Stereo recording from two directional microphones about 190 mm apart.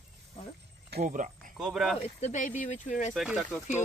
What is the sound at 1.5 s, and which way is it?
Speech, 5° right (ahead or behind).